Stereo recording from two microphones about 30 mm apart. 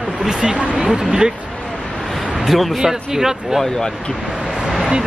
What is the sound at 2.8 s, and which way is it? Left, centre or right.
Speech, centre.